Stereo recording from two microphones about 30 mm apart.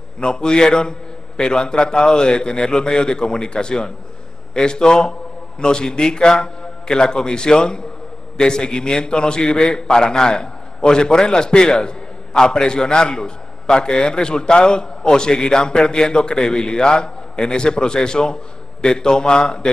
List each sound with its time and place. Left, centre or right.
0.2 s a man's voice: left